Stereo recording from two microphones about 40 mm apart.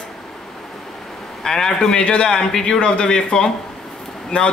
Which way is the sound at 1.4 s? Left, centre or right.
Centre.